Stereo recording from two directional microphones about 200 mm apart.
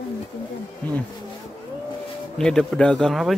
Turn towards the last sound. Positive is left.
turn(degrees=0)  # may be behind; listen again after turning